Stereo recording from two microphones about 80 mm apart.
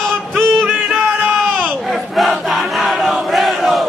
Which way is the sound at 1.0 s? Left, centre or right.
Centre.